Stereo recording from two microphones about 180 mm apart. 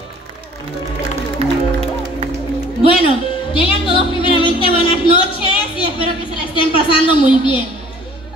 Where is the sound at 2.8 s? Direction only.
30° left (ahead or behind).